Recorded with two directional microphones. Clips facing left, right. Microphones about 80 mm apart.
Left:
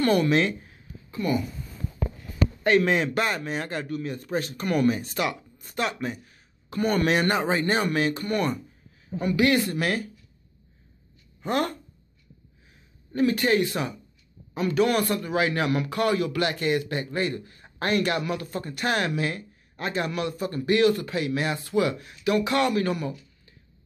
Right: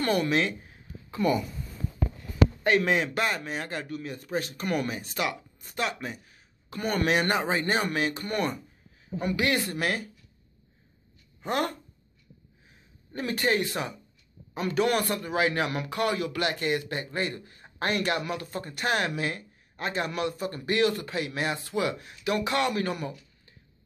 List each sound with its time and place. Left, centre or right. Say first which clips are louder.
0.0 s a man's voice: left 4 dB; centre
2.6 s a man's voice: left 6 dB; centre
11.4 s a man's voice: left 2 dB; centre
13.1 s a man's voice: left 5 dB; right